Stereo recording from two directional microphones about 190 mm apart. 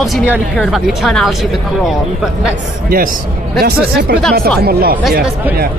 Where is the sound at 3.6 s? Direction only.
55° right (ahead or behind).